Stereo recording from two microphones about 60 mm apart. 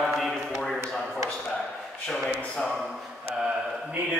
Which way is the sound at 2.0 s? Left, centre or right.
Centre.